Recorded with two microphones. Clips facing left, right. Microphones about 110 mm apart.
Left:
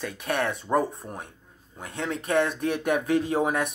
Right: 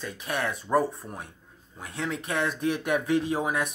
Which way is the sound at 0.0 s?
55° left (ahead or behind).